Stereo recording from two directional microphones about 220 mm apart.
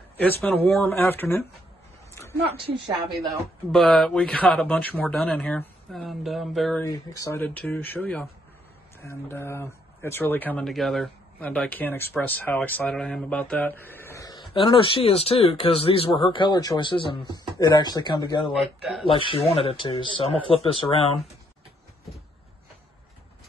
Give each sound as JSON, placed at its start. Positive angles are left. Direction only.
{"t": 0.2, "sound": "speech", "side_deg": 10}
{"t": 3.2, "sound": "speech", "side_deg": 0}
{"t": 6.8, "sound": "speech", "side_deg": 15}
{"t": 18.6, "sound": "speech", "side_deg": 0}
{"t": 19.0, "sound": "speech", "side_deg": 25}